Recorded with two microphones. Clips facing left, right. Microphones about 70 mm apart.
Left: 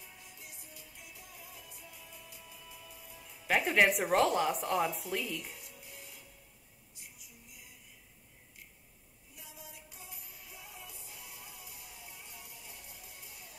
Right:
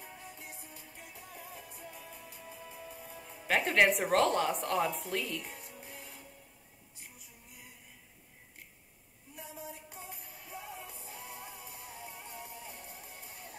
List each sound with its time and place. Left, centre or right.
0.0 s music: right
3.4 s a woman's voice: centre
5.4 s music: right
7.0 s a sound: right
9.3 s music: right